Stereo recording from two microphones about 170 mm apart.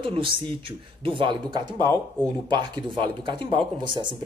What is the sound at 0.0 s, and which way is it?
Speech, 30° right (ahead or behind).